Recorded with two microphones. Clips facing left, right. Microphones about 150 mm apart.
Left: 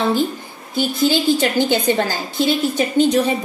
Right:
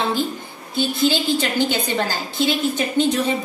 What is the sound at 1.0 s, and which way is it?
Speech, 45° left (ahead or behind).